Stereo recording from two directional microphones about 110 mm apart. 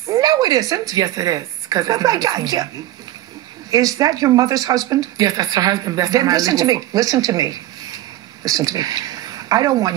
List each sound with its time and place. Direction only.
0.0 s speech: 35° right (ahead or behind)
3.7 s speech: 35° right (ahead or behind)